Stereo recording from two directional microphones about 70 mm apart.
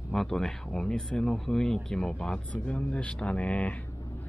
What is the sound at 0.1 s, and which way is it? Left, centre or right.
Speech, centre.